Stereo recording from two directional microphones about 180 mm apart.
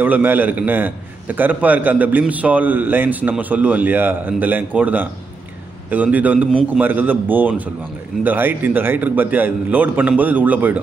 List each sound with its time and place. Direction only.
0.0 s a man's voice: 10° right (ahead or behind)